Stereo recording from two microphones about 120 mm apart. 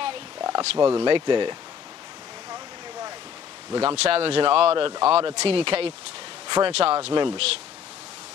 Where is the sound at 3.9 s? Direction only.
55° right (ahead or behind).